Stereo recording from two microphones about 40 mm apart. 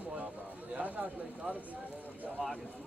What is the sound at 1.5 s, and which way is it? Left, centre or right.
Speech, right.